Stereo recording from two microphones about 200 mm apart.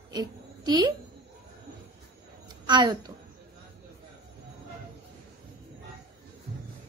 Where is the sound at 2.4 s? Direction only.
20° right (ahead or behind).